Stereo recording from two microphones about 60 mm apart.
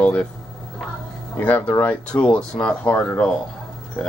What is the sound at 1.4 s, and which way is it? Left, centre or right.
Speech, left.